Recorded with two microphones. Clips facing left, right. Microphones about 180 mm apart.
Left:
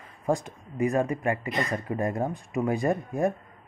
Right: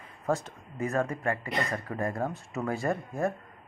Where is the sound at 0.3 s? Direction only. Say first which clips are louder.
Left 3 dB; 15° left (ahead or behind).